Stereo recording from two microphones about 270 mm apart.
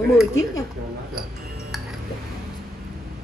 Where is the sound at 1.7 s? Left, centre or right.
Centre.